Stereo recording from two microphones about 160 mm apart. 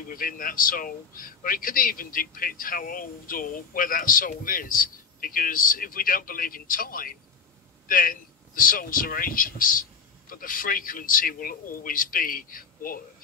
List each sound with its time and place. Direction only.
0.1 s a man's voice: 60° left (ahead or behind)